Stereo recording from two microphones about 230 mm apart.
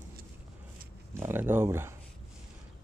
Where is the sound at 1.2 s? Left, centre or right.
Centre.